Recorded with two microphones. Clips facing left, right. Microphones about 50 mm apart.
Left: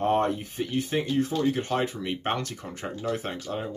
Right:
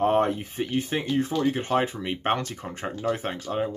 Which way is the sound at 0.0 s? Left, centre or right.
Right.